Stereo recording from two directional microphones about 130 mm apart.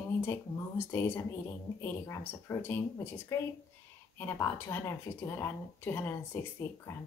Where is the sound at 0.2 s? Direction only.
20° left (ahead or behind).